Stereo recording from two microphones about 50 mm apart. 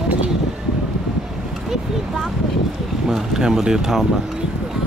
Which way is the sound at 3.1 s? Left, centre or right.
Centre.